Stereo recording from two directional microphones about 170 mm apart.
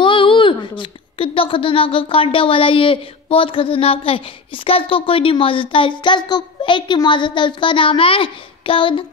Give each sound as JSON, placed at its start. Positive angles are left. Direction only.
{"t": 0.0, "sound": "a woman's voice", "side_deg": 30}